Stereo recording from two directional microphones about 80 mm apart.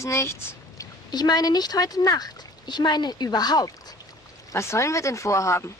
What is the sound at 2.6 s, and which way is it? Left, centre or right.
A woman's voice, left.